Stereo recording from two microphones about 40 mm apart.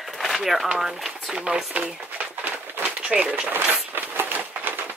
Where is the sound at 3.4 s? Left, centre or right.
Right.